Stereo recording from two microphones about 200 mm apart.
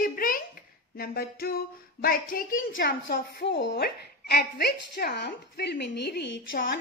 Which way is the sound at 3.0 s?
60° left (ahead or behind).